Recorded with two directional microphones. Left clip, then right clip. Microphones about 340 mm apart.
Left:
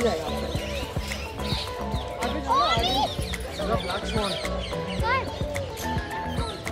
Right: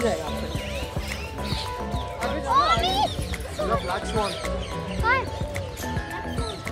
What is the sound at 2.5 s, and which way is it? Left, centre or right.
Children playing, right.